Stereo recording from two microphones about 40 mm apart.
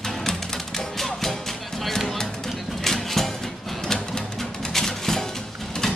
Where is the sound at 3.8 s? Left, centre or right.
Centre.